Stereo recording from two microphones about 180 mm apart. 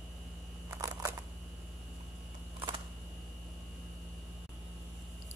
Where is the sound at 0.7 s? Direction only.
15° right (ahead or behind).